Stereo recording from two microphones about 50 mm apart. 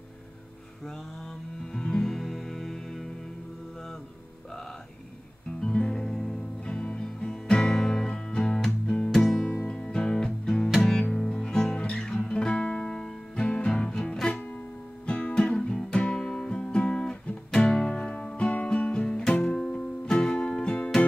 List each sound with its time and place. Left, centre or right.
1.7 s music: centre
5.5 s music: left
19.4 s music: centre